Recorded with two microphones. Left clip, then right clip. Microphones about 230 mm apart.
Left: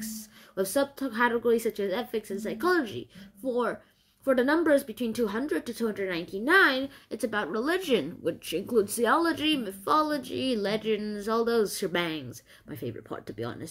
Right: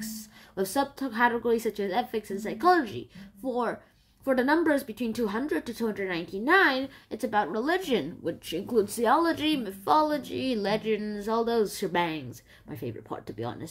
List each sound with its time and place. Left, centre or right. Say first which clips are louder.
0.0 s a woman's voice: even; centre